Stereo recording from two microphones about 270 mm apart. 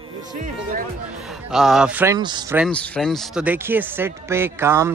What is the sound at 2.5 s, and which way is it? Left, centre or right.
Speech, centre.